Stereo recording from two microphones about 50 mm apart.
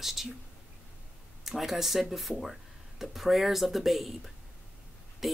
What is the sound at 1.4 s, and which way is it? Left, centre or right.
Speech, centre.